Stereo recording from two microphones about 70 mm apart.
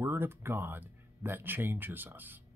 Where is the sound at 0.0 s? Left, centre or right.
Right.